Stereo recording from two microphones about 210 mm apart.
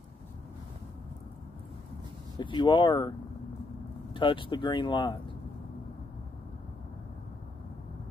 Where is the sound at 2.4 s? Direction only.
20° left (ahead or behind).